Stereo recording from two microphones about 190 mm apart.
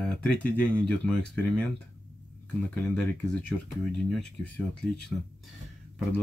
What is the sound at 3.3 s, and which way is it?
Speech, centre (ahead or behind).